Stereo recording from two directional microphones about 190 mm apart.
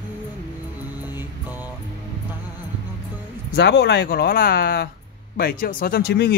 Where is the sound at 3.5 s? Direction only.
65° left (ahead or behind).